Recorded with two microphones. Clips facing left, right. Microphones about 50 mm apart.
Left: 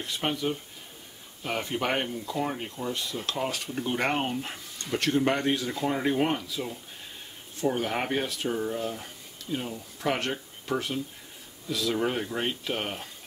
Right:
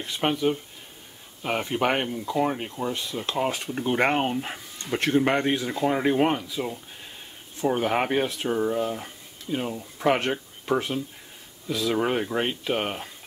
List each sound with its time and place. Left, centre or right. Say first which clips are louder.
0.0 s speech: right 5 dB; centre